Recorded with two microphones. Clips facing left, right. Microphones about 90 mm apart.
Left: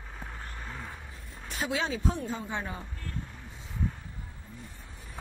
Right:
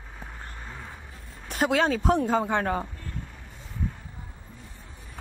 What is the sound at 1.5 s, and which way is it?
Speech, 60° right (ahead or behind).